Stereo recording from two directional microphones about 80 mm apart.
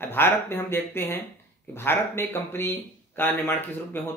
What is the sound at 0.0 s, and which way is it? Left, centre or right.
Speech, left.